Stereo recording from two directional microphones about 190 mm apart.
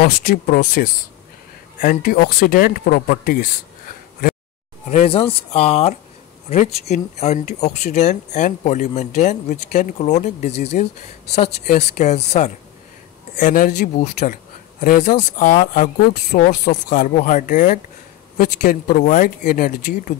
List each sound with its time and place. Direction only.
0.0 s speech: 50° left (ahead or behind)
4.8 s speech: 35° left (ahead or behind)